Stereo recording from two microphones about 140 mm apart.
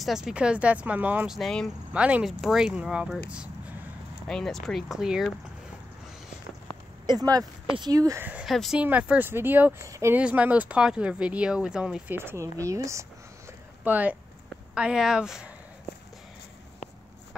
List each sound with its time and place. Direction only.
0.0 s speech: centre (ahead or behind)
2.0 s speech: 10° right (ahead or behind)
4.3 s speech: 5° left (ahead or behind)
7.1 s speech: 25° right (ahead or behind)
8.2 s speech: 10° right (ahead or behind)
10.1 s a woman's voice: 10° right (ahead or behind)